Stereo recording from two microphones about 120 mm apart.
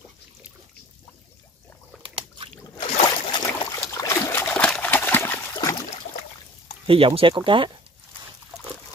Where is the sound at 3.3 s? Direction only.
35° left (ahead or behind).